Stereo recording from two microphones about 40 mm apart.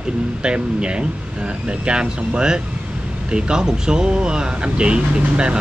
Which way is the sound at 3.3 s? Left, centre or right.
Right.